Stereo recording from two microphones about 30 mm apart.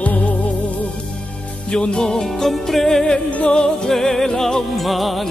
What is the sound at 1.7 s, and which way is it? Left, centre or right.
Music, left.